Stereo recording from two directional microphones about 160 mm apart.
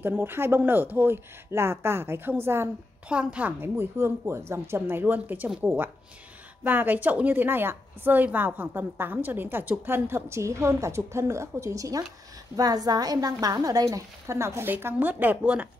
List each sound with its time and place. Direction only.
0.0 s a woman's voice: 15° right (ahead or behind)